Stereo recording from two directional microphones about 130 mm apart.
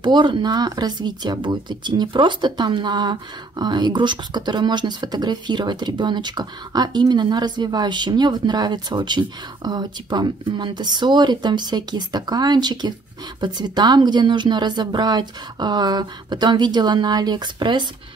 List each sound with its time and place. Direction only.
0.0 s speech: 35° right (ahead or behind)